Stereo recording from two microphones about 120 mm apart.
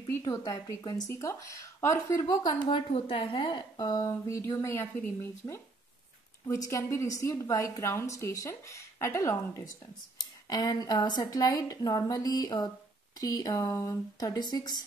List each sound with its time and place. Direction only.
0.2 s a woman's voice: 35° left (ahead or behind)
2.4 s a woman's voice: 50° left (ahead or behind); by 4.8 s 25° left (ahead or behind)
6.4 s a woman's voice: 25° left (ahead or behind)